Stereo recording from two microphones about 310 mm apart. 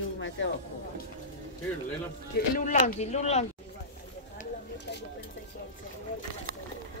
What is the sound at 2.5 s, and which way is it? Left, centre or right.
Speech, left.